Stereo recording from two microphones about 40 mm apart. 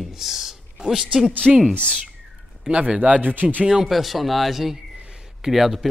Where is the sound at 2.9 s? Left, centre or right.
Right.